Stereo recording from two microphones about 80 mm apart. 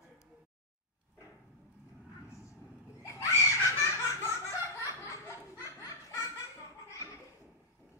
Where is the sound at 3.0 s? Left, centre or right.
Left.